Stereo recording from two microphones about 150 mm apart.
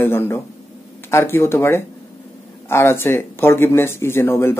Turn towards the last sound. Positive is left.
turn(degrees=15)  # may be behind; listen again after turning